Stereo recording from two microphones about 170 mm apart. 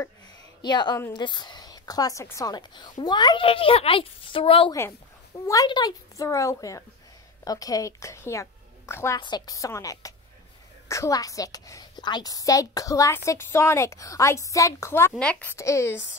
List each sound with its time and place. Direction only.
0.6 s a woman's voice: 25° left (ahead or behind)